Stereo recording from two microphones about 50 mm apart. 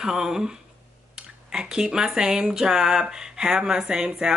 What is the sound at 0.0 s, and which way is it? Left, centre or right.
Speech, centre.